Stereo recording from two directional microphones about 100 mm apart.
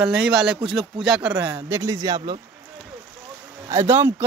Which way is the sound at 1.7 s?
35° right (ahead or behind).